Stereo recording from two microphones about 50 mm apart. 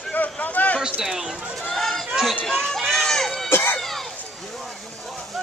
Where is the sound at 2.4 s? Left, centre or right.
Centre.